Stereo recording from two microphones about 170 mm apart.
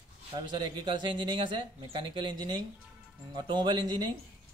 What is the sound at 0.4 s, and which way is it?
Speech, 30° right (ahead or behind).